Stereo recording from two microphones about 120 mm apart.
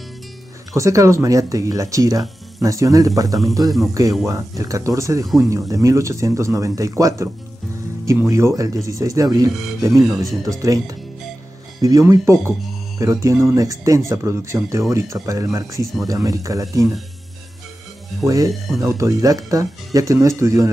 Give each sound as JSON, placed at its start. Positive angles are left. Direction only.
{"t": 0.7, "sound": "speech", "side_deg": -25}
{"t": 8.3, "sound": "speech", "side_deg": -25}
{"t": 18.2, "sound": "speech", "side_deg": -30}